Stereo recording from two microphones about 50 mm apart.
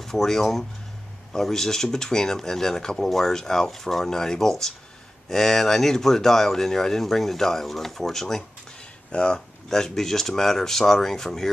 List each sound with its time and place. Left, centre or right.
0.0 s speech: centre
9.7 s speech: centre